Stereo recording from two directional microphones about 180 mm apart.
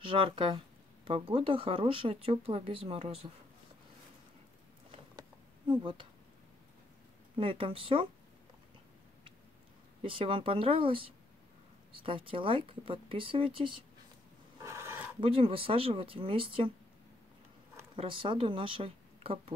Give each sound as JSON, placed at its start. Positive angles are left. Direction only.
{"t": 0.0, "sound": "speech", "side_deg": -30}
{"t": 5.7, "sound": "speech", "side_deg": -30}
{"t": 7.3, "sound": "speech", "side_deg": -30}
{"t": 10.0, "sound": "speech", "side_deg": -30}
{"t": 14.6, "sound": "a sound", "side_deg": -15}
{"t": 15.1, "sound": "speech", "side_deg": -30}
{"t": 17.9, "sound": "speech", "side_deg": -30}